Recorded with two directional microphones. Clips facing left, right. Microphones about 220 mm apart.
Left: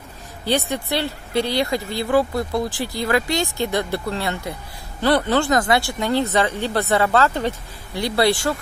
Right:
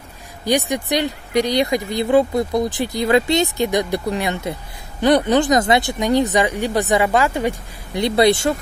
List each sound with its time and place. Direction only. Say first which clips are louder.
0.5 s speech: right 3 dB; 15° right (ahead or behind)